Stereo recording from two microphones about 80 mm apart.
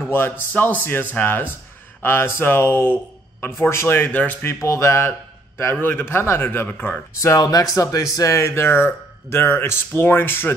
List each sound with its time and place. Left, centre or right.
0.5 s speech: left
4.5 s speech: left
7.2 s speech: left